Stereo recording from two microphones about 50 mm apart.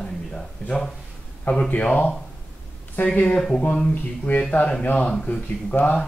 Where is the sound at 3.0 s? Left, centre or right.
Left.